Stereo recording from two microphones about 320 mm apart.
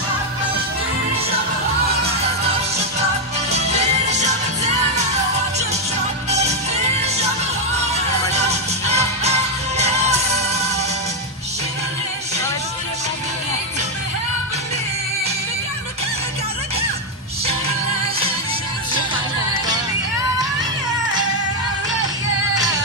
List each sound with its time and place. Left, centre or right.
3.7 s music: right
6.4 s music: centre